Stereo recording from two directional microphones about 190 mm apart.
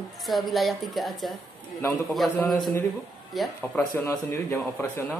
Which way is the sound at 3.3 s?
10° left (ahead or behind).